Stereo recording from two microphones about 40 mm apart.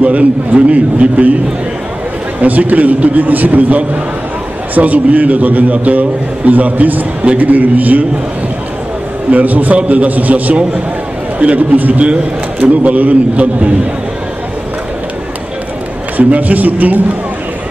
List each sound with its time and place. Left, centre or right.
0.0 s a man's voice: right
2.4 s a man's voice: right
9.3 s a man's voice: right
16.2 s a man's voice: right